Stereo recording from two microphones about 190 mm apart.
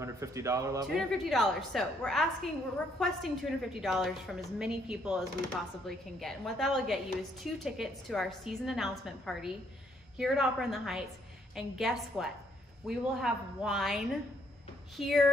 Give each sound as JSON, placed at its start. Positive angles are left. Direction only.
{"t": 0.0, "sound": "speech", "side_deg": -15}
{"t": 0.9, "sound": "a woman's voice", "side_deg": 0}